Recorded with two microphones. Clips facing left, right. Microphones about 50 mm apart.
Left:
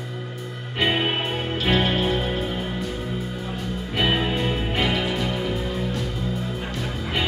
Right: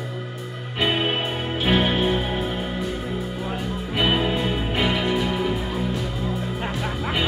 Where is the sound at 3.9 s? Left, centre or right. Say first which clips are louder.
Right 1 dB; centre.